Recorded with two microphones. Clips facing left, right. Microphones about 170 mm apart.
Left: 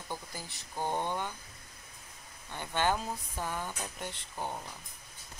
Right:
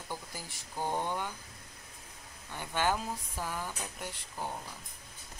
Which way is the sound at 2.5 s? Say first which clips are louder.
Left 1 dB; 10° right (ahead or behind).